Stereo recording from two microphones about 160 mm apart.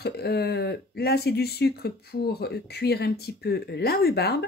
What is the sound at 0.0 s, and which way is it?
Speech, 90° left.